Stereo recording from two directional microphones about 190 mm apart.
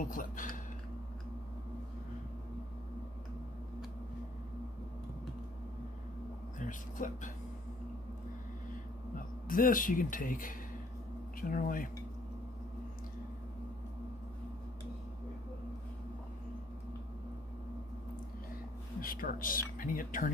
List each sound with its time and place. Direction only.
0.1 s speech: 45° left (ahead or behind)
6.6 s speech: 45° left (ahead or behind)
9.1 s speech: 45° left (ahead or behind)
18.9 s speech: 50° left (ahead or behind)